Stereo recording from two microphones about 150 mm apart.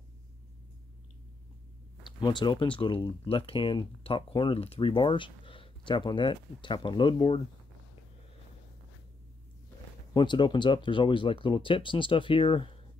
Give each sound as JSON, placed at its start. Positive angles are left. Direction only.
{"t": 2.0, "sound": "speech", "side_deg": 30}
{"t": 10.1, "sound": "speech", "side_deg": 30}